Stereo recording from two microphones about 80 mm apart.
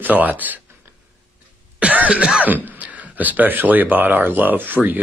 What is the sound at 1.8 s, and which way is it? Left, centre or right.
Cough, centre.